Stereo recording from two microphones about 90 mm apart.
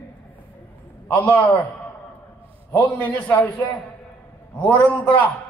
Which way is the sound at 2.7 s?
20° left (ahead or behind).